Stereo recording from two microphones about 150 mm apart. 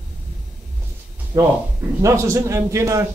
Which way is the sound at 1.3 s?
25° right (ahead or behind).